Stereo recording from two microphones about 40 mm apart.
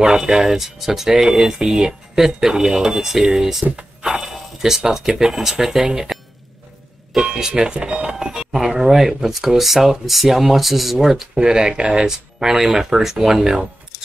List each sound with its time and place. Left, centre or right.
0.0 s speech: centre
7.2 s speech: centre
11.3 s speech: centre